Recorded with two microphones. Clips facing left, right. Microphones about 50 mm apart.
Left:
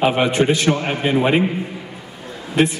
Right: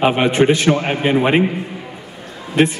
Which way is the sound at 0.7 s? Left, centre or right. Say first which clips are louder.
Right 2 dB; centre.